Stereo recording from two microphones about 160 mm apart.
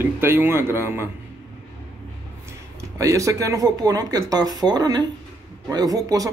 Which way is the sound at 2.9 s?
20° right (ahead or behind).